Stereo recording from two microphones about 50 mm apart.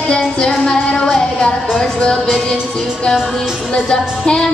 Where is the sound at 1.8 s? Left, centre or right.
Centre.